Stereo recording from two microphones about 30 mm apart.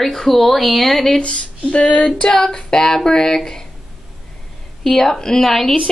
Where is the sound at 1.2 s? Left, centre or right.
Left.